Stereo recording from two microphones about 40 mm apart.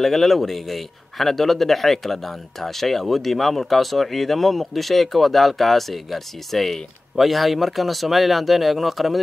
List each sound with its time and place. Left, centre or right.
0.0 s a man's voice: centre